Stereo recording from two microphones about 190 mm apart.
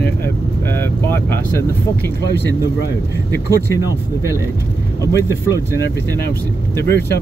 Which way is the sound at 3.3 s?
10° left (ahead or behind).